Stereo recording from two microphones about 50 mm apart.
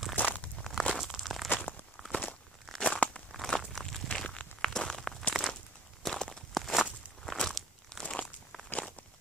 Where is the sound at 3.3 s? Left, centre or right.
Centre.